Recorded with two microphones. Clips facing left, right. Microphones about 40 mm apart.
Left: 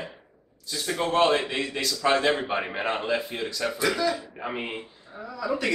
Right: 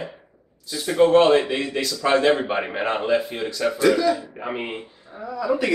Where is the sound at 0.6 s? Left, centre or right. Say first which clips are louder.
Right 10 dB; centre.